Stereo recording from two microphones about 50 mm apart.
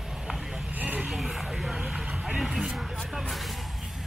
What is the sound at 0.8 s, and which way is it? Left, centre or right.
Vehicle, right.